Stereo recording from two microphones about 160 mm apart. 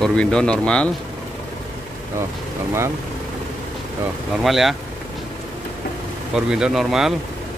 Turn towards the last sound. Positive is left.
turn(degrees=0)  # may be behind; listen again after turning